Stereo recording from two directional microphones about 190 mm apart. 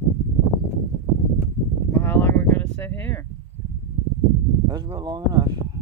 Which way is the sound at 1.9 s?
10° left (ahead or behind).